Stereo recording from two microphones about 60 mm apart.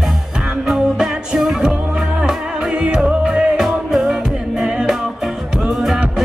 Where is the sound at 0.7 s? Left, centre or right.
Centre.